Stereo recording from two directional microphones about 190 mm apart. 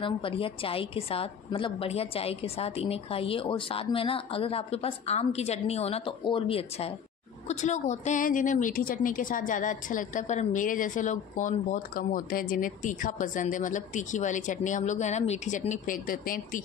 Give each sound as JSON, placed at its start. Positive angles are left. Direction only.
{"t": 0.0, "sound": "a woman's voice", "side_deg": 30}